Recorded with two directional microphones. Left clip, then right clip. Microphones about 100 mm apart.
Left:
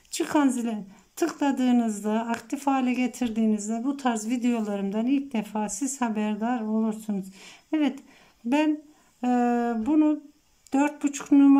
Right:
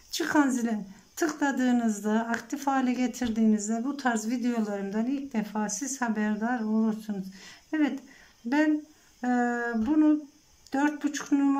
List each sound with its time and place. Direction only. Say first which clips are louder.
0.1 s speech: left 1 dB; 20° left (ahead or behind)
9.2 s speech: left 3 dB; 25° left (ahead or behind)